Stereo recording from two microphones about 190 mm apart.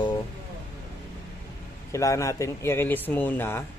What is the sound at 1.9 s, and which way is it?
Speech, 15° left (ahead or behind).